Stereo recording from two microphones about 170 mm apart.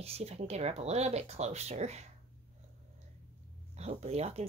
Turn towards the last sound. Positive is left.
turn(degrees=-35)  # may be behind; listen again after turning